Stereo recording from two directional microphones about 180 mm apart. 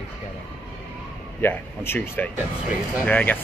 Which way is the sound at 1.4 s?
10° left (ahead or behind).